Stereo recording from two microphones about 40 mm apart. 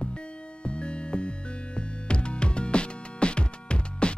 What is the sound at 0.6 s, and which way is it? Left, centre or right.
Music, left.